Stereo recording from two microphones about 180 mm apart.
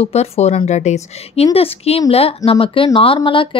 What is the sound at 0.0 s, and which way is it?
Speech, 35° left (ahead or behind).